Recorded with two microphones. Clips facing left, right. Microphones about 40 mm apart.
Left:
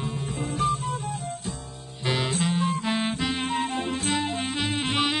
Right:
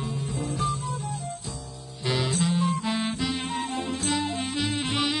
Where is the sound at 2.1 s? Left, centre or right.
Left.